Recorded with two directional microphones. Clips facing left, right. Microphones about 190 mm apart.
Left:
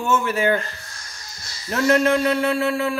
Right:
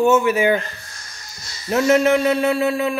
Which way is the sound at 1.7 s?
15° right (ahead or behind).